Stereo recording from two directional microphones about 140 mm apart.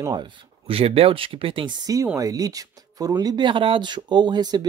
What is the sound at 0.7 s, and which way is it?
Speech, 45° right (ahead or behind).